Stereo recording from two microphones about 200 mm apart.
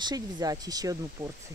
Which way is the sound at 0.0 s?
20° right (ahead or behind).